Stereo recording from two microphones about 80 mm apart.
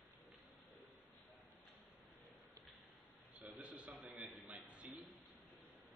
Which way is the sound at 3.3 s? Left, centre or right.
Centre.